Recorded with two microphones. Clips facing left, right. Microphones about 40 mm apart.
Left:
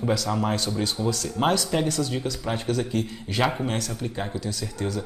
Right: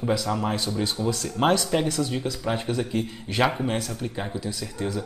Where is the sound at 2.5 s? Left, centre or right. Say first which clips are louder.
Left 1 dB; centre.